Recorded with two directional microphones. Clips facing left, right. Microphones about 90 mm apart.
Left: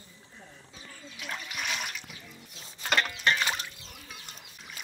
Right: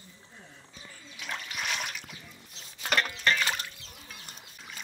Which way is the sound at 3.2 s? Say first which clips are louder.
Even; 15° left (ahead or behind).